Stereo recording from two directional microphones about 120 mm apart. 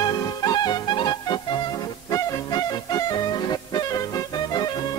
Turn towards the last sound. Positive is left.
turn(degrees=35)  # may be behind; listen again after turning